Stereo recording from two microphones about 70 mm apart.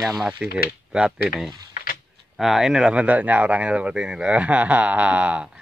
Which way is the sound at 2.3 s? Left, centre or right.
Centre.